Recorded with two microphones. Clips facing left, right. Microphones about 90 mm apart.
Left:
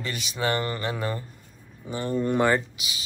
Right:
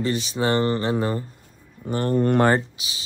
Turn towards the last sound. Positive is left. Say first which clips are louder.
# right 2 dB
turn(degrees=-30)  # may be behind; listen again after turning